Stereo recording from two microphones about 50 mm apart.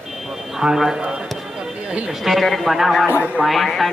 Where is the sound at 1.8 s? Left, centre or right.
Right.